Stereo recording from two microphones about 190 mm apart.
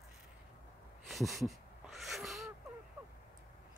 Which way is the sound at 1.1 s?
Centre (ahead or behind).